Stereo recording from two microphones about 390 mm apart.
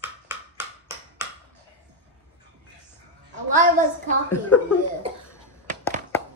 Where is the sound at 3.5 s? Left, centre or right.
Centre.